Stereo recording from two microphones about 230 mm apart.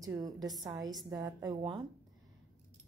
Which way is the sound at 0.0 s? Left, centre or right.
Centre.